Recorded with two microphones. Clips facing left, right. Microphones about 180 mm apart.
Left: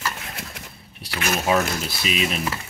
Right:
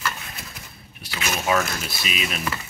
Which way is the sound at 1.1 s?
50° left (ahead or behind).